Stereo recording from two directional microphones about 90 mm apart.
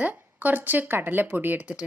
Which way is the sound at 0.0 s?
20° right (ahead or behind).